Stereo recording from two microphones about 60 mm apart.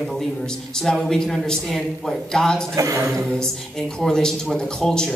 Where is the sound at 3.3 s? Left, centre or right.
Centre.